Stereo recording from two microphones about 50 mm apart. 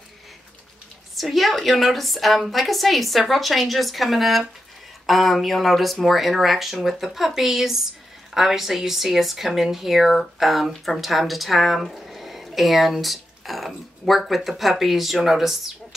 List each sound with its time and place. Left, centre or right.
1.1 s a woman's voice: centre